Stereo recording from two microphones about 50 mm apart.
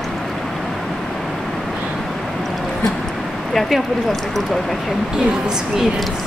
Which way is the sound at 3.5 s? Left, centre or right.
Centre.